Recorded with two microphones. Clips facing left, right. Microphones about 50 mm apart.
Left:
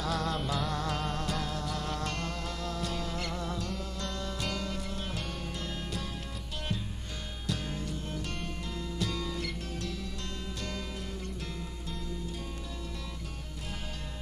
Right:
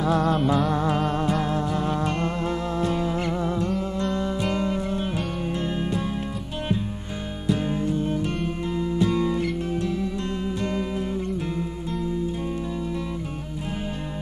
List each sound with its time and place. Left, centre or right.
0.0 s music: right
7.4 s music: right